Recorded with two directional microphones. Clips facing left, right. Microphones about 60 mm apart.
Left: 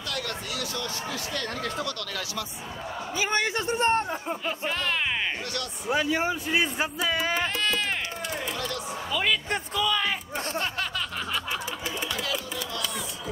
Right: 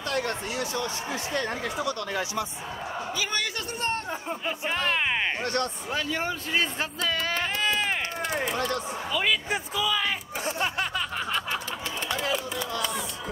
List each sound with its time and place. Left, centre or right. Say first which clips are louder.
0.1 s speech: right 4 dB; right
3.2 s a man's voice: left 7 dB; left
4.1 s speech: left 1 dB; centre
4.6 s speech: right 2 dB; centre
5.4 s speech: right 6 dB; right
5.9 s speech: left 4 dB; centre
7.6 s music: right 1 dB; centre
8.5 s speech: right 4 dB; right
9.1 s a sound: even; centre